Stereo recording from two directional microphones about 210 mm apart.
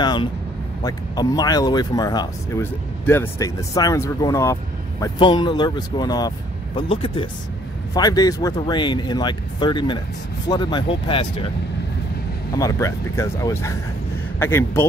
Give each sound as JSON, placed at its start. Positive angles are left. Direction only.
{"t": 0.0, "sound": "speech", "side_deg": 20}
{"t": 12.5, "sound": "speech", "side_deg": 15}